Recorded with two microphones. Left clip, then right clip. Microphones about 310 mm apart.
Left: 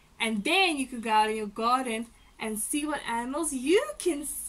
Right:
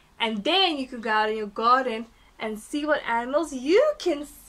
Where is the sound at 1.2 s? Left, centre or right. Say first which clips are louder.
Even; right.